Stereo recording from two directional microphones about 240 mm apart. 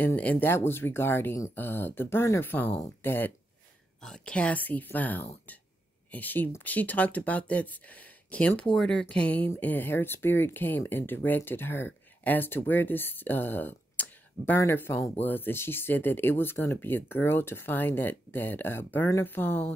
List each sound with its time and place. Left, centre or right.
0.0 s speech: centre